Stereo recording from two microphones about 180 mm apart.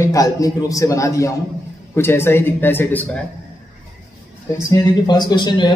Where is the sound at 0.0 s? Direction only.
20° left (ahead or behind).